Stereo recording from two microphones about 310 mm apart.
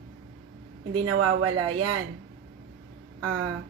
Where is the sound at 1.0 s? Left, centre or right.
Right.